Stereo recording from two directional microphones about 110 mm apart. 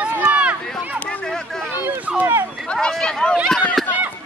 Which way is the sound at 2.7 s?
10° left (ahead or behind).